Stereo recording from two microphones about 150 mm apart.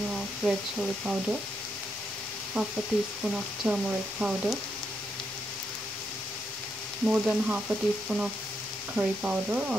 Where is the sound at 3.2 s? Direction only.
5° right (ahead or behind).